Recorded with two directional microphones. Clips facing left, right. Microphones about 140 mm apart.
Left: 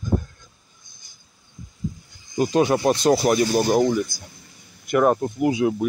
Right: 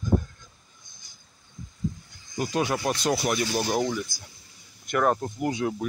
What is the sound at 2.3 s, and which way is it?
Speech, 25° left (ahead or behind).